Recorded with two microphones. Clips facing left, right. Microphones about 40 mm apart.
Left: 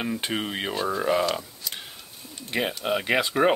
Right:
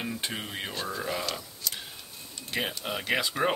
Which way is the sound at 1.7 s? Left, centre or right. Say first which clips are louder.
Right 2 dB; centre.